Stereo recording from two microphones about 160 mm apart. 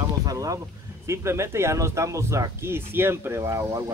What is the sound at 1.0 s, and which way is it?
Speech, 15° right (ahead or behind).